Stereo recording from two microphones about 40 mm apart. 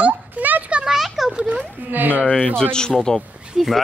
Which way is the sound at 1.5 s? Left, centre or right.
Right.